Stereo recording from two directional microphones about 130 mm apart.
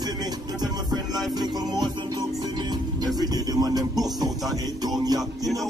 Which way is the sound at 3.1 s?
30° right (ahead or behind).